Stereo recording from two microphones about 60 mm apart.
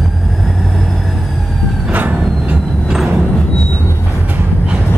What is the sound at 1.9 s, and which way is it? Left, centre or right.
Train, right.